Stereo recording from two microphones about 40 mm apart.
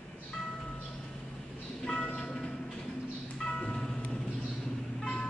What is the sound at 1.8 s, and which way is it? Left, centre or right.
Music, left.